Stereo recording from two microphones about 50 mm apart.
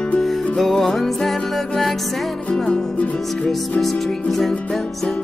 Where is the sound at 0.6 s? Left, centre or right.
Centre.